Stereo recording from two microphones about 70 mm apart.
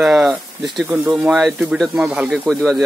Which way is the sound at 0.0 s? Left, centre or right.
Centre.